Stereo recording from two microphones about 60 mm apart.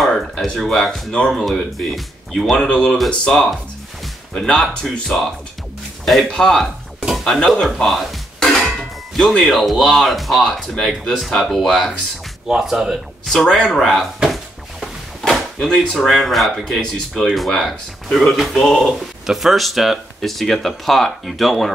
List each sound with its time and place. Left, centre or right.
0.0 s speech: centre
2.5 s speech: centre
6.3 s dishes: centre
7.6 s music: centre
9.4 s a man's voice: centre
13.3 s speech: centre
13.7 s speech: centre
15.2 s a sound: centre
15.6 s speech: centre